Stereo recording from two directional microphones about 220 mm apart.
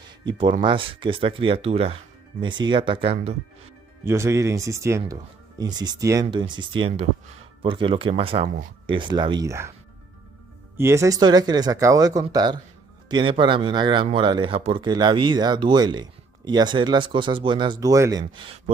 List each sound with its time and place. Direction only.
0.2 s speech: 20° right (ahead or behind)
4.0 s speech: 10° right (ahead or behind)
10.8 s speech: 10° right (ahead or behind)
18.2 s speech: 25° right (ahead or behind)